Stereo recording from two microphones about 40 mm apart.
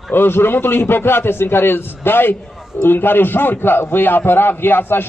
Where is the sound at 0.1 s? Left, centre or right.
Left.